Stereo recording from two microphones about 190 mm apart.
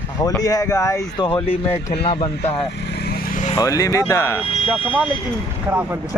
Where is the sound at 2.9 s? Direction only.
55° left (ahead or behind).